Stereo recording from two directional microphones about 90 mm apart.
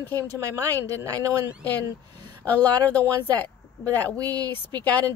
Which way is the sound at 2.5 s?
15° left (ahead or behind).